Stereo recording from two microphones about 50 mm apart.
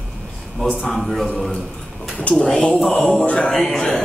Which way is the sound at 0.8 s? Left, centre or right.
Centre.